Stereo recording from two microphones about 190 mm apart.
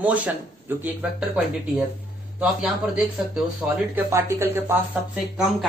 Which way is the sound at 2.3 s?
5° right (ahead or behind).